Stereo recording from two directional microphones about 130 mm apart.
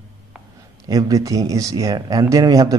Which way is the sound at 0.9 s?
30° right (ahead or behind).